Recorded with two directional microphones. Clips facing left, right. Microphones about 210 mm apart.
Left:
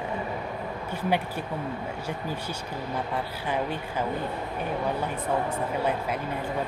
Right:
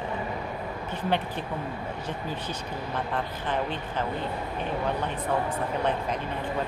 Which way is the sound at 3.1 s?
10° left (ahead or behind).